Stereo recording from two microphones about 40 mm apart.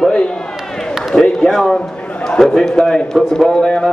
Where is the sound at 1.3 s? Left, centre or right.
Centre.